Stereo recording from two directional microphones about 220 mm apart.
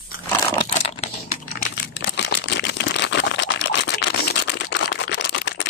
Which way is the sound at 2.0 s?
50° left (ahead or behind).